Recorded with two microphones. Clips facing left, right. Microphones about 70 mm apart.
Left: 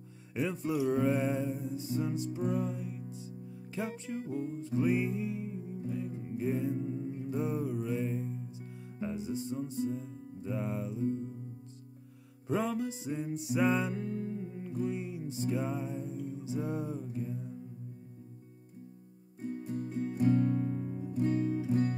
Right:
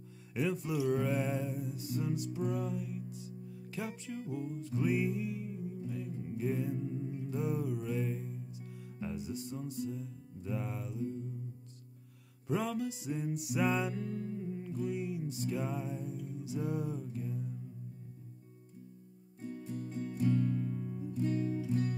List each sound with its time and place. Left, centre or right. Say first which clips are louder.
0.3 s speech: even; left
0.8 s music: left 3 dB; left
7.8 s mantra: left 3 dB; centre
9.0 s music: left 4 dB; left
12.4 s music: left 2 dB; left
14.8 s music: left 2 dB; left
19.4 s music: left 4 dB; left